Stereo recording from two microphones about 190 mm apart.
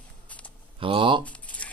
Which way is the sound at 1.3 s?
5° left (ahead or behind).